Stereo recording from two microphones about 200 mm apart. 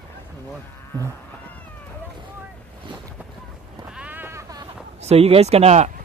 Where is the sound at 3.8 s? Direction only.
5° right (ahead or behind).